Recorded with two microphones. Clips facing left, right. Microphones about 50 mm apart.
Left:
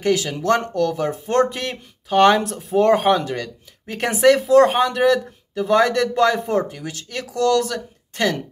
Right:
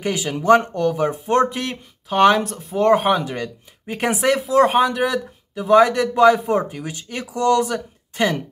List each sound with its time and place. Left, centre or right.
0.0 s speech: centre